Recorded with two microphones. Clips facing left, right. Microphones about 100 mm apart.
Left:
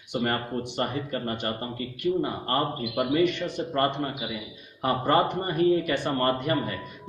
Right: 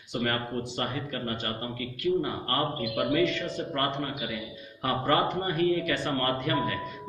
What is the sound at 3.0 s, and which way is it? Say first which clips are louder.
A man's voice: left 3 dB; 15° left (ahead or behind).